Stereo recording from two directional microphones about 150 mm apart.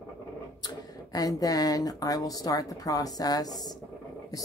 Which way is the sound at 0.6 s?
25° left (ahead or behind).